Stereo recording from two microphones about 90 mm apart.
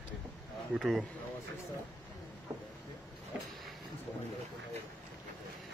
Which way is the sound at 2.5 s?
50° right (ahead or behind).